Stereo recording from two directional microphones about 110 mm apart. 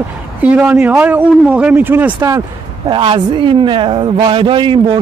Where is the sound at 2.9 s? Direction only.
55° right (ahead or behind).